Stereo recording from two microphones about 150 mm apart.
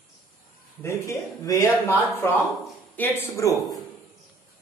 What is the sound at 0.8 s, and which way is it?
A man's voice, 20° left (ahead or behind).